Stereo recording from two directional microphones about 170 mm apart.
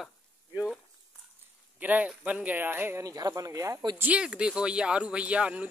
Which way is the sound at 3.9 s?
5° right (ahead or behind).